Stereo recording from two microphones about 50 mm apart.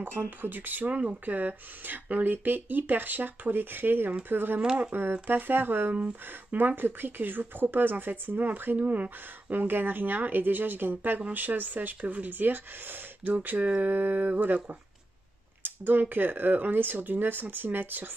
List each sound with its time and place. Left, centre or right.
0.4 s speech: right
0.9 s speech: right
1.3 s speech: right
5.9 s speech: right